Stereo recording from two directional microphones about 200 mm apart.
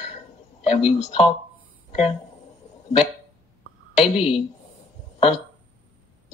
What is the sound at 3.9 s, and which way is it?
Speech, 30° left (ahead or behind).